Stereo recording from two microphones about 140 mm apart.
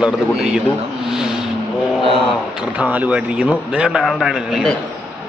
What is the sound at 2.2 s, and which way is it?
A man's voice, 10° right (ahead or behind).